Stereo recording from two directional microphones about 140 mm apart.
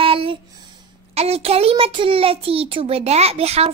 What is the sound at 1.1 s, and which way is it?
A child's voice, 45° right (ahead or behind).